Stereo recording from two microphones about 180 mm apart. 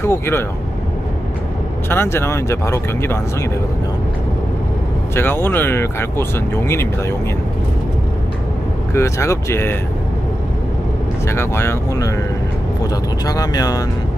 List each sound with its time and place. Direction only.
0.0 s speech: 15° left (ahead or behind)
1.9 s speech: 15° left (ahead or behind)
5.1 s speech: 15° left (ahead or behind)
8.9 s speech: 15° left (ahead or behind)
11.2 s speech: 15° left (ahead or behind)
13.2 s speech: 20° left (ahead or behind)